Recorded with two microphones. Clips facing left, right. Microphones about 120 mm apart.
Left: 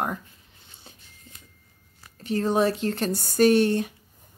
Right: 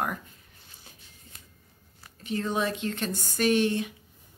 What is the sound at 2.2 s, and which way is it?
Speech, 35° left (ahead or behind).